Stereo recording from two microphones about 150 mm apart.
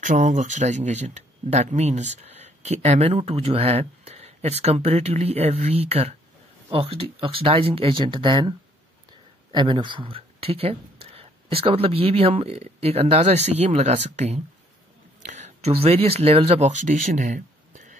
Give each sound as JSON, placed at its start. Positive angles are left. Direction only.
{"t": 0.0, "sound": "speech", "side_deg": -60}